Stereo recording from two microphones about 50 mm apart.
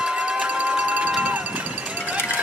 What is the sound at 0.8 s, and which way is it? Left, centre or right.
Music, right.